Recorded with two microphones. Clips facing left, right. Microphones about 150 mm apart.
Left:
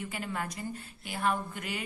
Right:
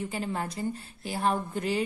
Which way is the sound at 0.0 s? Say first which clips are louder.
Right 4 dB; 30° right (ahead or behind).